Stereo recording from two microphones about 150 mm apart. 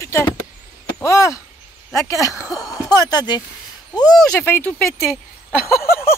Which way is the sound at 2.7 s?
25° left (ahead or behind).